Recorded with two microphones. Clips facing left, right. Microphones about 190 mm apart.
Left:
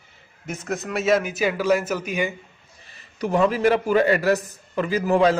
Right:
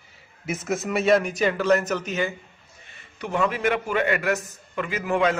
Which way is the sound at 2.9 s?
35° left (ahead or behind).